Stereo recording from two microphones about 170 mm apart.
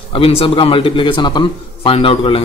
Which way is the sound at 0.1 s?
30° left (ahead or behind).